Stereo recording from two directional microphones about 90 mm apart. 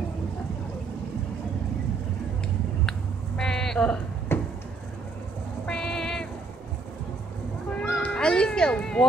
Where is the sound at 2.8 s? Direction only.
5° left (ahead or behind).